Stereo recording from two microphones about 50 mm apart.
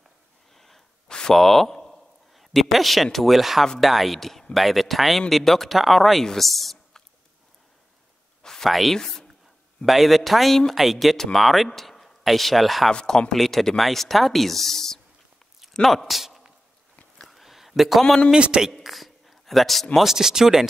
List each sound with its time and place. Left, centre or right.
0.6 s sneeze: centre
1.0 s a man's voice: centre
8.4 s a sound: centre
8.6 s speech: centre
12.9 s speech: centre
15.6 s a sound: centre
18.3 s a woman's voice: centre
18.7 s speech: centre